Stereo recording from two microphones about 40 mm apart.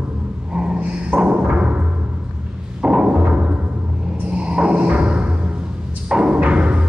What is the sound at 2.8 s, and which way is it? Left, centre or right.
Timpani, right.